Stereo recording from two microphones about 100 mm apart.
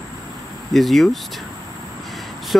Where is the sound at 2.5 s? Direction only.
5° left (ahead or behind).